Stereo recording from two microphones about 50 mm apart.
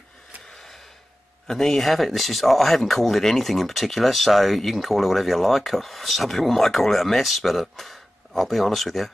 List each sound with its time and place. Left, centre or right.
1.5 s speech: centre